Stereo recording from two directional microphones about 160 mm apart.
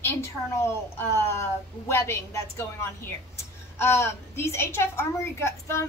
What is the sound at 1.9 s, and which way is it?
Speech, 15° left (ahead or behind).